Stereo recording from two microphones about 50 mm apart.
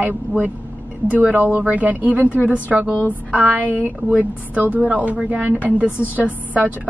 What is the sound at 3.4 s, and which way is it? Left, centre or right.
Speech, right.